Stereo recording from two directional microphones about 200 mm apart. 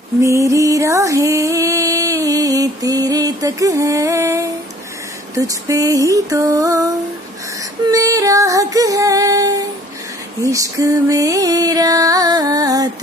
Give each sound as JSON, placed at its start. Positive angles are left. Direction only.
{"t": 0.2, "sound": "a sound", "side_deg": -15}
{"t": 5.3, "sound": "music", "side_deg": -15}
{"t": 7.9, "sound": "music", "side_deg": -15}